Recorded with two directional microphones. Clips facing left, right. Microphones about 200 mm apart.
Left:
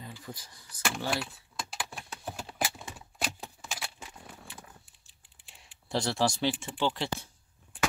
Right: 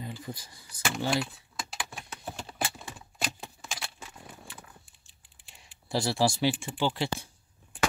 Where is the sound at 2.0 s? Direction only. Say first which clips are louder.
Even; 5° left (ahead or behind).